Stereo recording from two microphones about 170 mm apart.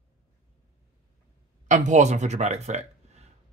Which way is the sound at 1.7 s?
45° right (ahead or behind).